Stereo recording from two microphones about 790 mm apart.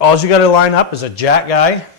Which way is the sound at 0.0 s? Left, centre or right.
Left.